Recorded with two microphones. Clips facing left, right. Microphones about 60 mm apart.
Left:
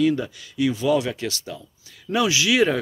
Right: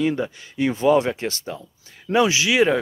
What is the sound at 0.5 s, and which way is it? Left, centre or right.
Speech, right.